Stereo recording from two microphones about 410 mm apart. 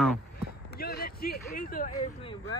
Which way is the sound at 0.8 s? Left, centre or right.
Left.